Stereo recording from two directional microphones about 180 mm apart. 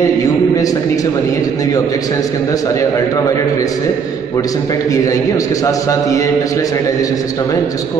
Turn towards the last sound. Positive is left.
turn(degrees=20)  # may be behind; listen again after turning